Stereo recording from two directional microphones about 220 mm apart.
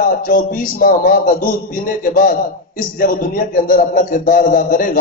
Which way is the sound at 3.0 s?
40° left (ahead or behind).